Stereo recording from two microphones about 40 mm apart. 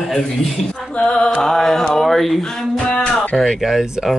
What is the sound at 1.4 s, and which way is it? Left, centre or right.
Mantra, centre.